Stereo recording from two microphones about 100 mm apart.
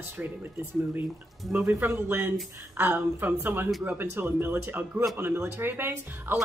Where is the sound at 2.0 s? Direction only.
20° right (ahead or behind).